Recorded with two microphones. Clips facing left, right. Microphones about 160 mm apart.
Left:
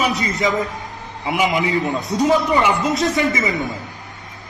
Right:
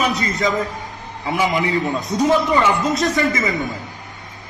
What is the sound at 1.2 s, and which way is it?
A man's voice, 20° left (ahead or behind).